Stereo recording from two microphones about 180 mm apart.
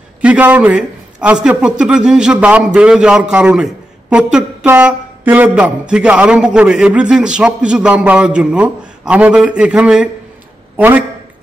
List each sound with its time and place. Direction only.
0.2 s a man's voice: 5° right (ahead or behind)